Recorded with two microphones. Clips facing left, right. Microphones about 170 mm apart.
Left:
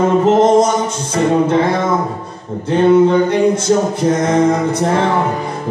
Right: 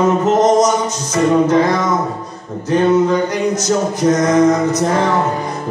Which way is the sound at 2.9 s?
30° left (ahead or behind).